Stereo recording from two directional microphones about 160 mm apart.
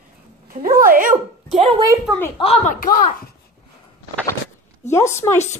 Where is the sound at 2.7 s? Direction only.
60° left (ahead or behind).